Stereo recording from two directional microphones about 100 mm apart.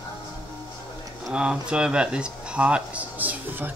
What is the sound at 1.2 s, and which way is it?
Speech, 10° right (ahead or behind).